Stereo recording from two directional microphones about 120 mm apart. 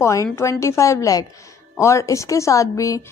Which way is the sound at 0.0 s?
25° left (ahead or behind).